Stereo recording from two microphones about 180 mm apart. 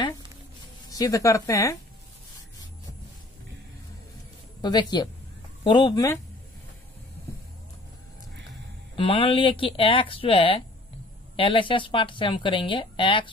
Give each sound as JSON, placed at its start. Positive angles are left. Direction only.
{"t": 0.8, "sound": "speech", "side_deg": 20}
{"t": 4.6, "sound": "speech", "side_deg": 25}
{"t": 8.9, "sound": "speech", "side_deg": 30}